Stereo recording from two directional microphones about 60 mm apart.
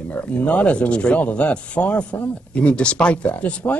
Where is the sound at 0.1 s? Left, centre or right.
Left.